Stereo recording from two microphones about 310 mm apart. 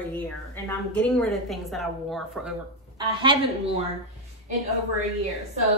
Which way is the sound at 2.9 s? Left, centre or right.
Centre.